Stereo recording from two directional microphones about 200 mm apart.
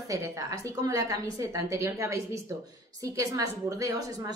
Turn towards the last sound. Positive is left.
turn(degrees=-15)  # may be behind; listen again after turning